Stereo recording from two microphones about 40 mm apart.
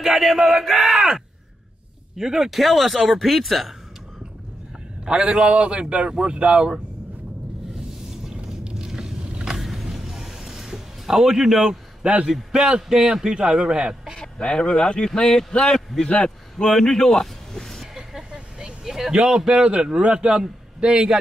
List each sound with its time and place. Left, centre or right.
0.0 s speech: centre
5.0 s a man's voice: right
8.6 s vehicle: centre
9.6 s a sound: centre
12.0 s a man's voice: right
14.1 s speech: centre
16.6 s speech: centre
17.9 s vehicle: centre
18.9 s a man's voice: centre